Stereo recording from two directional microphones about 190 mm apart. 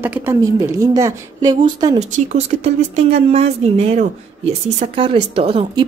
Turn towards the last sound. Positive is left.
turn(degrees=-30)  # may be behind; listen again after turning